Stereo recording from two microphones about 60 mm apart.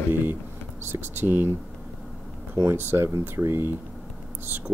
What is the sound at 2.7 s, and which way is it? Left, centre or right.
Speech, right.